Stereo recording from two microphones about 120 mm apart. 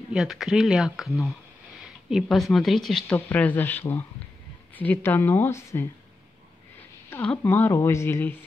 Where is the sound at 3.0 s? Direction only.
15° left (ahead or behind).